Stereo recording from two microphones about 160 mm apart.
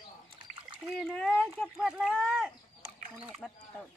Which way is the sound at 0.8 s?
Centre (ahead or behind).